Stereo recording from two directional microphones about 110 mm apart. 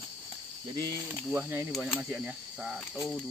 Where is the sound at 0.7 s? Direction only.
40° right (ahead or behind).